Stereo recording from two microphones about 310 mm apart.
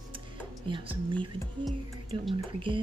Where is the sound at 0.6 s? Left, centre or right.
Centre.